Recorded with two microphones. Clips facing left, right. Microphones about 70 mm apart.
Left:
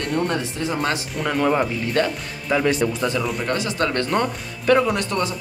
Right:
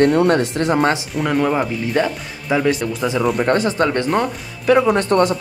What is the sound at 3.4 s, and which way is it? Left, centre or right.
Speech, right.